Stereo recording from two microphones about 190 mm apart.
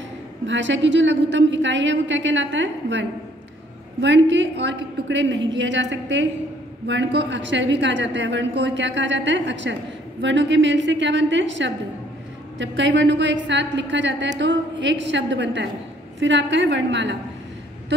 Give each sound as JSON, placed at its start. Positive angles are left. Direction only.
{"t": 0.5, "sound": "a woman's voice", "side_deg": -75}